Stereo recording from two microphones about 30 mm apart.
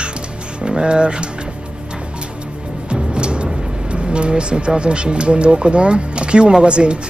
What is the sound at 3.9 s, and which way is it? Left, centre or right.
Speech, right.